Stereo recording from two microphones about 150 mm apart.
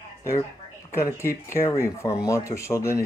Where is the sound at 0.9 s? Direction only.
15° left (ahead or behind).